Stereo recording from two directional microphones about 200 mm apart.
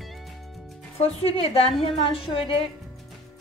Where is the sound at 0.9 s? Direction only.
30° left (ahead or behind).